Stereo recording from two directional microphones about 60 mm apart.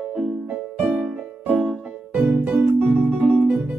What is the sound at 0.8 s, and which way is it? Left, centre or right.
Music, centre.